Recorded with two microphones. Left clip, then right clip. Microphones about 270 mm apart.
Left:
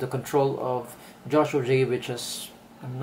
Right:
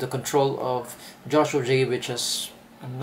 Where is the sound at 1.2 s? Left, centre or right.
Centre.